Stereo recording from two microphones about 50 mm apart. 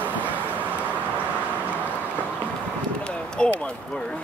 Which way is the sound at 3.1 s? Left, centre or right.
Centre.